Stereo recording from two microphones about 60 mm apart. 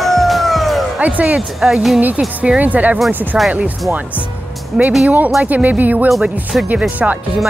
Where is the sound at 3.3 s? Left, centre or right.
Centre.